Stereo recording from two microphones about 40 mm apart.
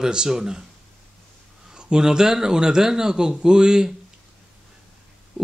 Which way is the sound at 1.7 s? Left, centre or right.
Right.